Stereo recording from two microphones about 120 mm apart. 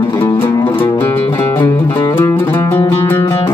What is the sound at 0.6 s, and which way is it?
Music, 40° left (ahead or behind).